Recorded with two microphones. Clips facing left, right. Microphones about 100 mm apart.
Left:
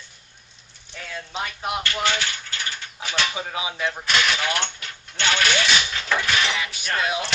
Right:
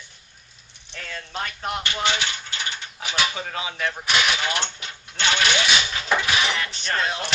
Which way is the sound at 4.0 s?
10° right (ahead or behind).